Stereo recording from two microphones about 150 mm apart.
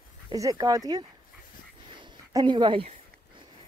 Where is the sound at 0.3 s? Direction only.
25° right (ahead or behind).